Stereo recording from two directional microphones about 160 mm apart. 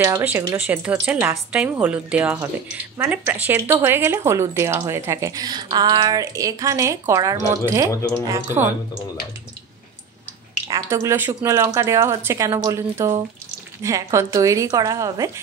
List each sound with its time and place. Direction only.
0.0 s speech: 15° right (ahead or behind)
0.6 s speech: 5° right (ahead or behind)
10.7 s speech: 15° right (ahead or behind)